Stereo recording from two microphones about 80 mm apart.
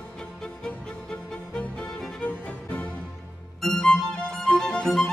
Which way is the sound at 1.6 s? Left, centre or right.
Centre.